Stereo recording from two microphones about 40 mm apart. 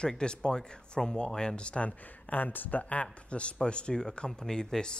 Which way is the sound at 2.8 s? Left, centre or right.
Left.